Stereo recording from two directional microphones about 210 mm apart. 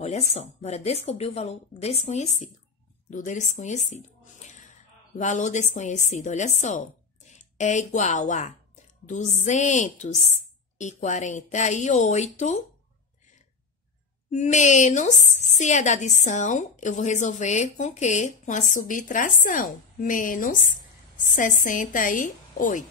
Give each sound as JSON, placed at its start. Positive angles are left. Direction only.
{"t": 0.0, "sound": "a woman's voice", "side_deg": 30}
{"t": 14.3, "sound": "a woman's voice", "side_deg": 35}